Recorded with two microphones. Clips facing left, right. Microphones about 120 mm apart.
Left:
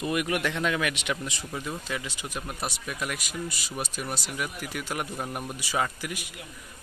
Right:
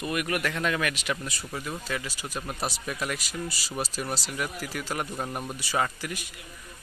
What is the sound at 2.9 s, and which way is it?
A man's voice, 5° left (ahead or behind).